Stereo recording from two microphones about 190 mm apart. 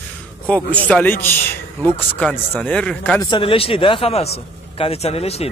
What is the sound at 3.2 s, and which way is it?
A man's voice, 25° left (ahead or behind).